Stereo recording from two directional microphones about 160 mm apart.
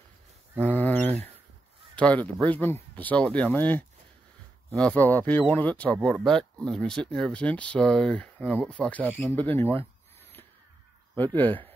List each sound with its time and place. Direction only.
0.7 s a sound: 10° left (ahead or behind)
2.0 s speech: 10° left (ahead or behind)
11.3 s speech: 10° left (ahead or behind)